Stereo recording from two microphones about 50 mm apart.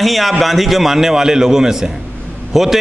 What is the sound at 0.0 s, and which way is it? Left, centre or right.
A man's voice, centre.